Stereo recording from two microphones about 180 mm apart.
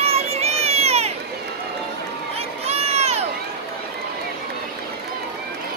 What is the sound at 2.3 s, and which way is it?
Crowd, 35° right (ahead or behind).